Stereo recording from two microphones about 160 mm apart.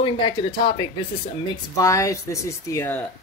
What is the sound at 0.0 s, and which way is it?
Speech, 30° left (ahead or behind).